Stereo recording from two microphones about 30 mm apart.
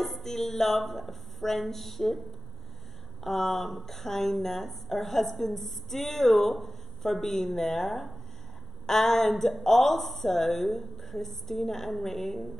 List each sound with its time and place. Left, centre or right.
0.0 s a woman's voice: centre
3.3 s a woman's voice: centre